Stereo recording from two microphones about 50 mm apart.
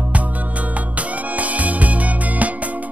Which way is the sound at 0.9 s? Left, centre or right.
Right.